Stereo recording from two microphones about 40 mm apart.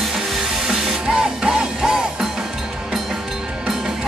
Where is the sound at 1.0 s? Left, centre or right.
Centre.